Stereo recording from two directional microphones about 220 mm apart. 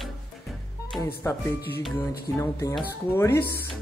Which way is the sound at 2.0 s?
10° left (ahead or behind).